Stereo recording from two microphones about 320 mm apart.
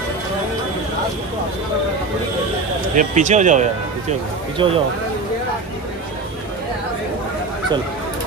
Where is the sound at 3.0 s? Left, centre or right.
Right.